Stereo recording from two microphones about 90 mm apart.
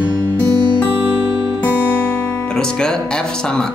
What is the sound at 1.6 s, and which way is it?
Music, 15° left (ahead or behind).